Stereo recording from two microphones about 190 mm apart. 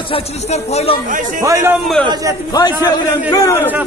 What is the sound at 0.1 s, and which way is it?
Speech, 35° left (ahead or behind).